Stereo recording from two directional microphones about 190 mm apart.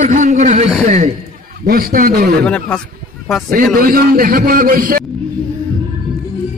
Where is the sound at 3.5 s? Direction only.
45° right (ahead or behind).